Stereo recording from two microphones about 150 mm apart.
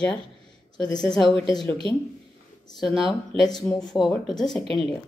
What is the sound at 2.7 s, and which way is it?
Speech, centre (ahead or behind).